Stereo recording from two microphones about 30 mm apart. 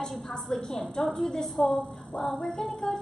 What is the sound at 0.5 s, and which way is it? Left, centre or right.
A woman's voice, centre.